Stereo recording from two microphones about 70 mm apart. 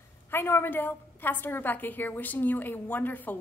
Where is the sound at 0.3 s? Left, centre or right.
Left.